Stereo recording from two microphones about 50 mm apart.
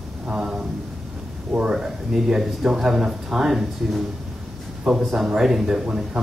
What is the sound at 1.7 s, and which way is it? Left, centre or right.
Speech, centre.